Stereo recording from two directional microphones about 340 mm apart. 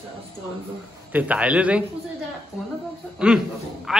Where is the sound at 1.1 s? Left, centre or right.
Centre.